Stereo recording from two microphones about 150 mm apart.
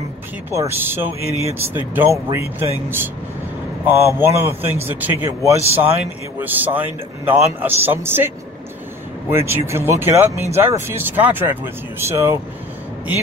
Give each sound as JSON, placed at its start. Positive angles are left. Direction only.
{"t": 0.5, "sound": "speech", "side_deg": -15}
{"t": 9.3, "sound": "speech", "side_deg": -15}